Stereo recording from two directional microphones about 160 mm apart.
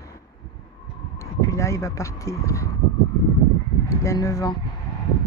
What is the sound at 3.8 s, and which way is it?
Speech, 20° left (ahead or behind).